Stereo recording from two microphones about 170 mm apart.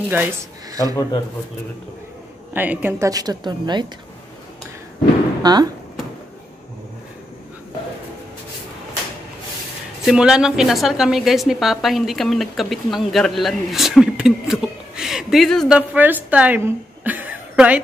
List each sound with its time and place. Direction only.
0.1 s speech: 10° right (ahead or behind)
2.5 s a woman's voice: 10° right (ahead or behind); by 3.8 s 25° right (ahead or behind)
5.4 s speech: 25° right (ahead or behind)
10.0 s a woman's voice: 5° right (ahead or behind)
15.9 s a woman's voice: 10° right (ahead or behind)